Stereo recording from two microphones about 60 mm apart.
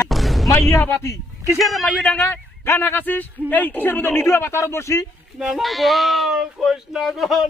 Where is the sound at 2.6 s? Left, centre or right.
Left.